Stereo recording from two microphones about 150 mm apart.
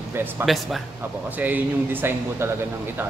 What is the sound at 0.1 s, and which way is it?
Speech, 15° right (ahead or behind).